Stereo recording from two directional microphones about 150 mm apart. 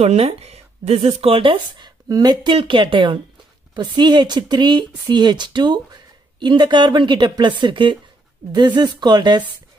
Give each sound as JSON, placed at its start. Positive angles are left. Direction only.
{"t": 0.0, "sound": "speech", "side_deg": -45}